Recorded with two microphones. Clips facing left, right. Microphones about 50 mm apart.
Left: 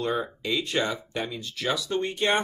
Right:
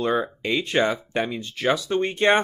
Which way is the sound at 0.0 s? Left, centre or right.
Right.